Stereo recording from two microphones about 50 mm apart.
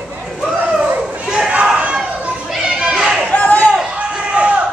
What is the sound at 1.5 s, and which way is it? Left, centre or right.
Crowd, right.